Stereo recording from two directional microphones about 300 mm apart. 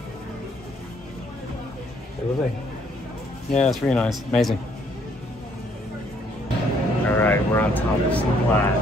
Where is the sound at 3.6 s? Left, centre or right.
Centre.